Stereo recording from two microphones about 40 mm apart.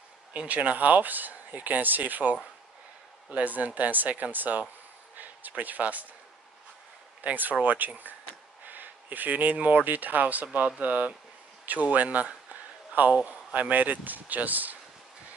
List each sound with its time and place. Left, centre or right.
0.5 s speech: right
3.3 s speech: right
5.1 s a sound: right
5.6 s speech: right
7.2 s speech: right
11.6 s a sound: right
13.1 s speech: right